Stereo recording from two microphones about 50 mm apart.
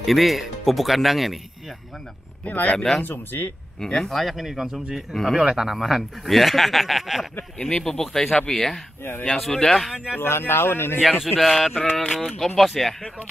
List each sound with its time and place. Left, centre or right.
0.0 s speech: centre
2.4 s speech: left
3.0 s speech: left
3.8 s speech: centre
5.4 s speech: centre
7.5 s speech: centre
10.1 s speech: left
11.3 s speech: centre